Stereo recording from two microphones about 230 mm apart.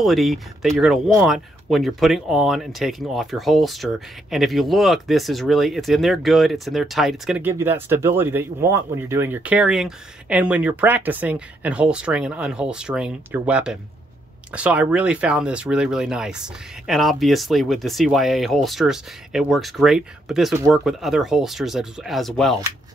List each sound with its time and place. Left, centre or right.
0.0 s speech: centre